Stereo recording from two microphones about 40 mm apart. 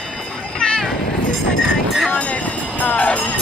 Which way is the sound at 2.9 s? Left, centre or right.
Left.